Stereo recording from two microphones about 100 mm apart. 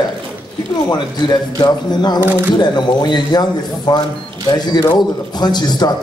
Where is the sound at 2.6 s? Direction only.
45° left (ahead or behind).